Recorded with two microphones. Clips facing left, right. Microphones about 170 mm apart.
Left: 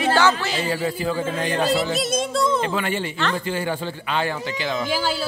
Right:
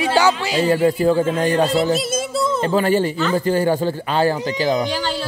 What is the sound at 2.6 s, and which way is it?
Speech, 35° right (ahead or behind).